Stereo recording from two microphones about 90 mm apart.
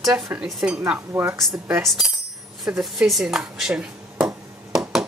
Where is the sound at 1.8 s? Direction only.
Centre (ahead or behind).